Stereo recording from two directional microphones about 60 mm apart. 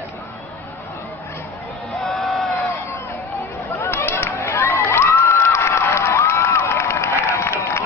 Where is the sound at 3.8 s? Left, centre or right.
Left.